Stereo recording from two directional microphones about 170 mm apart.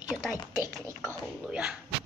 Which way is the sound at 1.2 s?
5° right (ahead or behind).